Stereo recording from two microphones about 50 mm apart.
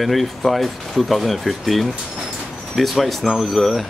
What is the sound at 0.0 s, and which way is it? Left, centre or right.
Speech, centre.